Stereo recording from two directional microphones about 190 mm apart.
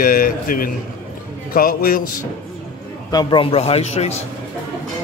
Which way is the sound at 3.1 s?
20° left (ahead or behind).